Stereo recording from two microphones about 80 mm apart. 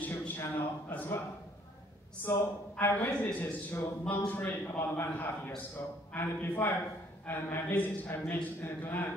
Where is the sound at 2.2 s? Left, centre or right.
Left.